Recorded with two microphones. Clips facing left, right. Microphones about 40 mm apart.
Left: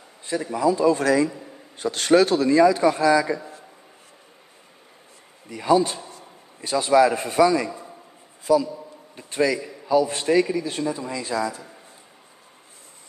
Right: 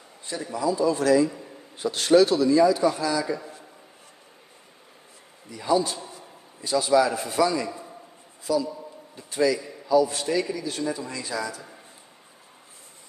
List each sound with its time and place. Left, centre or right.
0.3 s speech: left
5.6 s speech: left
7.4 s a man's voice: left
9.1 s a man's voice: left
10.8 s speech: centre